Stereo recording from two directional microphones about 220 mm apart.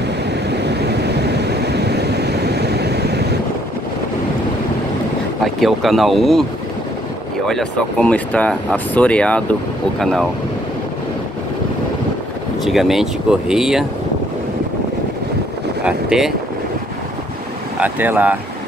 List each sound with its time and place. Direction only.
0.7 s vehicle: 50° right (ahead or behind)
5.4 s speech: centre (ahead or behind)
7.4 s speech: 5° left (ahead or behind)
12.6 s speech: centre (ahead or behind)
15.8 s speech: 5° right (ahead or behind)
17.7 s speech: 10° right (ahead or behind)